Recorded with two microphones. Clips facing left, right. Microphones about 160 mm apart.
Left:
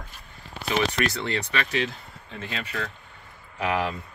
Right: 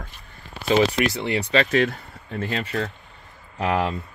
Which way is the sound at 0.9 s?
20° right (ahead or behind).